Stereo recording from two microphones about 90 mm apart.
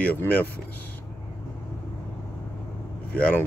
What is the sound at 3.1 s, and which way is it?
Speech, 15° left (ahead or behind).